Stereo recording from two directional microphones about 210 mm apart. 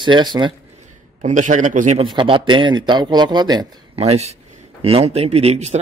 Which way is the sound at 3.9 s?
30° right (ahead or behind).